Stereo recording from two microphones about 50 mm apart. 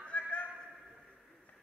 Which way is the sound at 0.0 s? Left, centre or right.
Left.